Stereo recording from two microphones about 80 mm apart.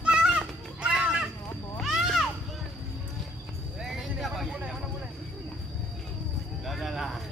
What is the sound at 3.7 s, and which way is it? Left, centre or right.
Vehicle, centre.